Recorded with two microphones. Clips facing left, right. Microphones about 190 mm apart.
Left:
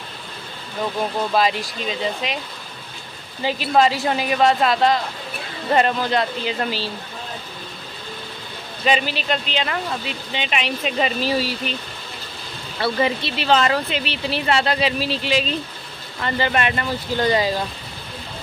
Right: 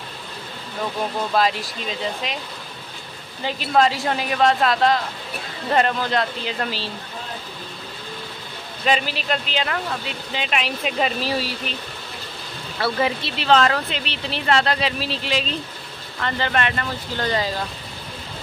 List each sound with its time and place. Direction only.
1.3 s speech: centre (ahead or behind)
3.4 s speech: 5° left (ahead or behind)
8.8 s speech: centre (ahead or behind)
12.8 s speech: centre (ahead or behind)